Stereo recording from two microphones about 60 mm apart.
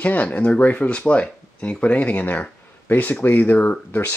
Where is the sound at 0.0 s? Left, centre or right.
Left.